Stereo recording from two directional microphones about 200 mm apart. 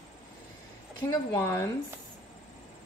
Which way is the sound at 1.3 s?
15° left (ahead or behind).